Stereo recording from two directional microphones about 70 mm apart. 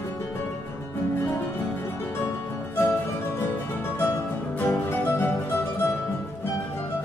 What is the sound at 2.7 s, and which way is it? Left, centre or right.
Music, left.